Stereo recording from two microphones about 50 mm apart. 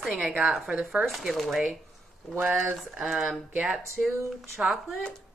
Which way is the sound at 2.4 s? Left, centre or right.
Centre.